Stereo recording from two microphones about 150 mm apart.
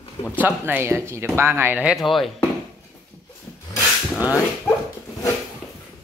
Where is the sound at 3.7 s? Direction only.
20° left (ahead or behind).